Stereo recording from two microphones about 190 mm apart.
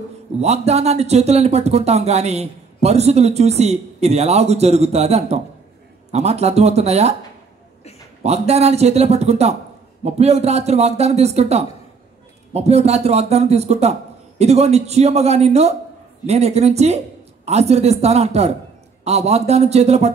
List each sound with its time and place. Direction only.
0.4 s speech: 35° right (ahead or behind)
8.2 s speech: 35° right (ahead or behind)